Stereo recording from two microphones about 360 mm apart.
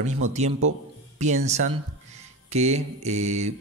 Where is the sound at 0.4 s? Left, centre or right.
Centre.